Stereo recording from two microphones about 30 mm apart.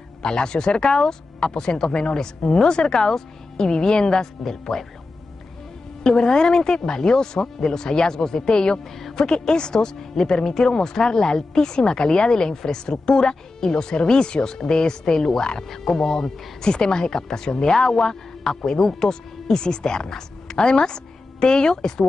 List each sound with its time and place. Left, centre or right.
0.2 s a woman's voice: left
4.5 s speech: centre
6.0 s a woman's voice: left
15.6 s speech: centre
15.9 s a woman's voice: left
20.5 s a woman's voice: left